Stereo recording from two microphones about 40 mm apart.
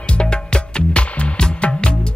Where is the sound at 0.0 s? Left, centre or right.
Left.